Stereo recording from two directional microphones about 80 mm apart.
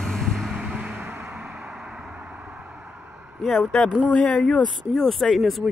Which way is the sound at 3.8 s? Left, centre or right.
Centre.